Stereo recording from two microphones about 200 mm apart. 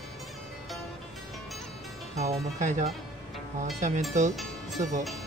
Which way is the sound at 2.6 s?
35° right (ahead or behind).